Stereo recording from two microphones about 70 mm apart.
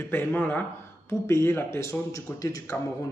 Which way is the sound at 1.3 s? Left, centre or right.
Left.